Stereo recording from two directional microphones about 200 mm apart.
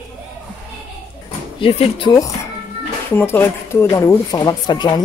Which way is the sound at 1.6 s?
25° left (ahead or behind).